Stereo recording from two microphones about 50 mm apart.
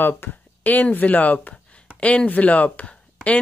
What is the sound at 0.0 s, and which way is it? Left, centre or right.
Speech, left.